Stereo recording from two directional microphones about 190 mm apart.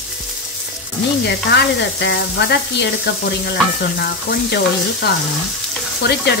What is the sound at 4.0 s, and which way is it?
Speech, 55° left (ahead or behind).